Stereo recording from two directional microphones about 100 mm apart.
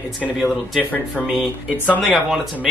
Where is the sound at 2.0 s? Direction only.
5° right (ahead or behind).